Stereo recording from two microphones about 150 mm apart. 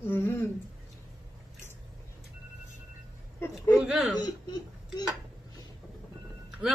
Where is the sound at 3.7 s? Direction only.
Centre (ahead or behind).